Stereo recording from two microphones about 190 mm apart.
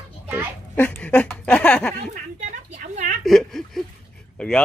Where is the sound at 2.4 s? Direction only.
40° right (ahead or behind).